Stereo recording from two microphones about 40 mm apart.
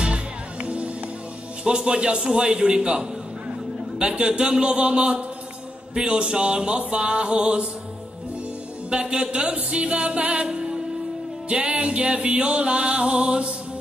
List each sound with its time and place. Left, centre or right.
0.0 s music: right
8.9 s music: right
9.5 s music: right